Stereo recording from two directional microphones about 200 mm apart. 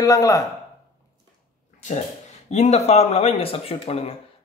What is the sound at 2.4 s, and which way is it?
A man's voice, 35° left (ahead or behind).